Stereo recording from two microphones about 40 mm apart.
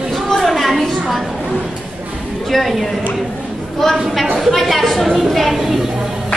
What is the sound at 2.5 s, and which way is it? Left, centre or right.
A woman's voice, centre.